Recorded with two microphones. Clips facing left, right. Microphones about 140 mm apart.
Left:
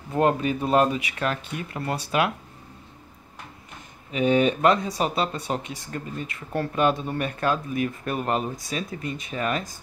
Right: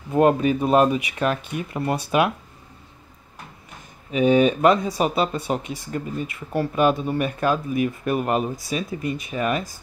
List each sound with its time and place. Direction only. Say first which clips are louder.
0.1 s speech: right 4 dB; 15° right (ahead or behind)
4.1 s speech: right 4 dB; 15° right (ahead or behind)